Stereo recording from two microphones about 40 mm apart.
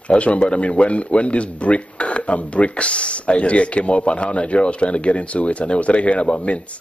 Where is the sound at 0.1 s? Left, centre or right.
Left.